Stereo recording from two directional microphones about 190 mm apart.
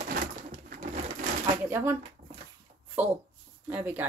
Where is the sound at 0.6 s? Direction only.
45° right (ahead or behind).